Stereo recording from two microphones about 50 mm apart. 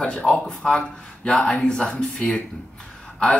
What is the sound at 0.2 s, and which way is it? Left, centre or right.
Speech, centre.